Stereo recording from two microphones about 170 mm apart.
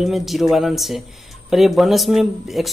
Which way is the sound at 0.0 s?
Centre (ahead or behind).